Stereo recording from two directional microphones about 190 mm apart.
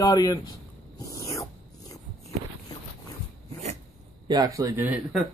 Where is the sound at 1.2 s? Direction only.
15° left (ahead or behind).